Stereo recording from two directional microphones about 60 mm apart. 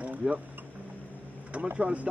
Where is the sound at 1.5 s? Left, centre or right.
Right.